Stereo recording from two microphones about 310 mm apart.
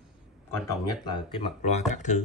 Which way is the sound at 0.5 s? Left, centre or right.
Centre.